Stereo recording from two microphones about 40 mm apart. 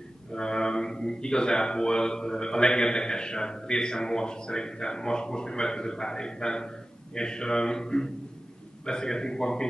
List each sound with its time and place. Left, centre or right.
0.3 s a man's voice: centre